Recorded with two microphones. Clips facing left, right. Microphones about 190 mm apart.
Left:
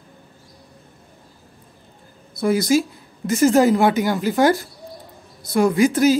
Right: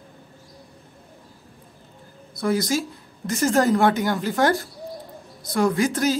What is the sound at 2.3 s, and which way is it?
Speech, 10° left (ahead or behind).